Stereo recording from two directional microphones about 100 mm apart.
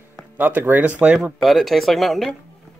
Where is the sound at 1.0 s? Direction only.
5° right (ahead or behind).